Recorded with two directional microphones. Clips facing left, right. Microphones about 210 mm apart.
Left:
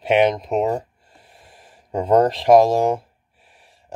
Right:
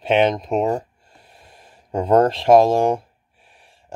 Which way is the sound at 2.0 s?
20° left (ahead or behind).